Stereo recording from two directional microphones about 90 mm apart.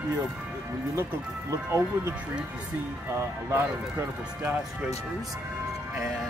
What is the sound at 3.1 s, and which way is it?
Speech, 30° right (ahead or behind).